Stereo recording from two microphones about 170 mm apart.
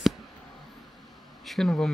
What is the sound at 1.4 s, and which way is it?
Speech, centre (ahead or behind).